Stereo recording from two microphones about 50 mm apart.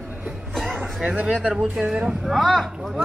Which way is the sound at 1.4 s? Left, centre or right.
Right.